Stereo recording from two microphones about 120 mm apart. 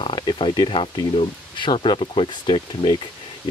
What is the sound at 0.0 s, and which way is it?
Speech, 40° left (ahead or behind).